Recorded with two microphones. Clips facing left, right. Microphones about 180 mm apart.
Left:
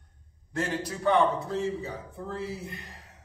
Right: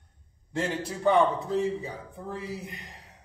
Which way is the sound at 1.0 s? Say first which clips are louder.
Right 1 dB; 15° right (ahead or behind).